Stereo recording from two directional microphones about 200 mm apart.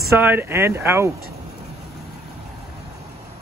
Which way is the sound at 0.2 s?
10° right (ahead or behind).